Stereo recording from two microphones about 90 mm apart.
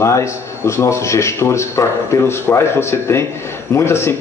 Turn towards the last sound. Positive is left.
turn(degrees=30)  # may be behind; listen again after turning